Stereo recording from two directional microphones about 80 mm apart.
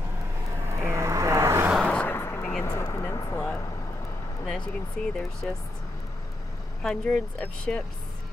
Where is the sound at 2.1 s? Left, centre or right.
Left.